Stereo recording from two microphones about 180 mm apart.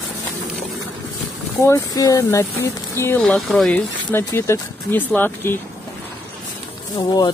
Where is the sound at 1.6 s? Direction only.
20° left (ahead or behind).